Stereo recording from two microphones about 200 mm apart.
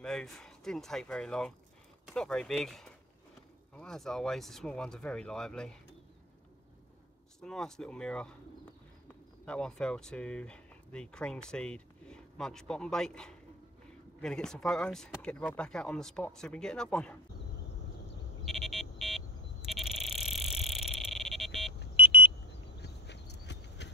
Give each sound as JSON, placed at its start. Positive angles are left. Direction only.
{"t": 0.0, "sound": "speech", "side_deg": 5}
{"t": 7.3, "sound": "speech", "side_deg": 5}
{"t": 9.5, "sound": "speech", "side_deg": 5}
{"t": 18.4, "sound": "a sound", "side_deg": 0}
{"t": 22.8, "sound": "duck", "side_deg": 60}